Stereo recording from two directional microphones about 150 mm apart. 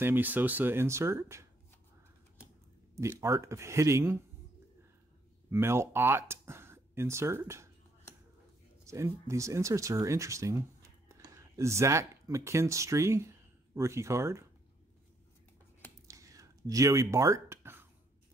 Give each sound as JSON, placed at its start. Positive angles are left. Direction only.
{"t": 0.0, "sound": "speech", "side_deg": -15}
{"t": 3.0, "sound": "speech", "side_deg": -20}
{"t": 5.5, "sound": "speech", "side_deg": -15}
{"t": 8.8, "sound": "speech", "side_deg": -20}
{"t": 16.1, "sound": "a sound", "side_deg": -20}